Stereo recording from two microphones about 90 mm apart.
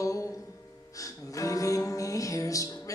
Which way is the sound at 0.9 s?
40° left (ahead or behind).